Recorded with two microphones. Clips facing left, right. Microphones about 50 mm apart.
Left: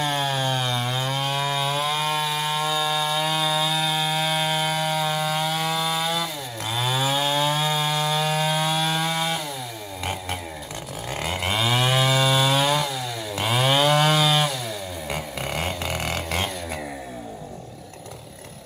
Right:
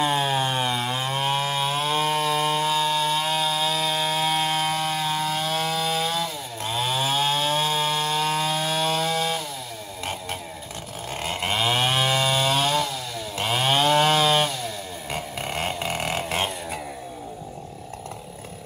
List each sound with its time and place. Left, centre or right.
0.0 s chainsaw: right; by 9.4 s centre
11.1 s chainsaw: centre
15.7 s a sound: centre